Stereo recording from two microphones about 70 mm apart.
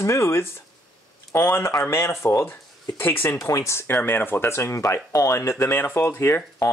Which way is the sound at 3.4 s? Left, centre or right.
Left.